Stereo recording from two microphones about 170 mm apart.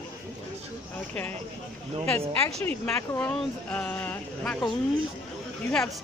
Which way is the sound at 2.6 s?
10° left (ahead or behind).